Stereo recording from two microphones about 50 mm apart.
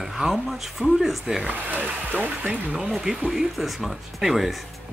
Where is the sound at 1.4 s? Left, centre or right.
Right.